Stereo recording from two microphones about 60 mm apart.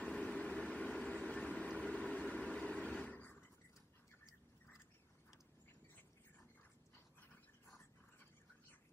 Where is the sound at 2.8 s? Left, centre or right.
Left.